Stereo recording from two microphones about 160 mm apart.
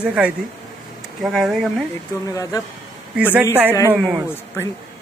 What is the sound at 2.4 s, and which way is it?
Speech, 20° left (ahead or behind).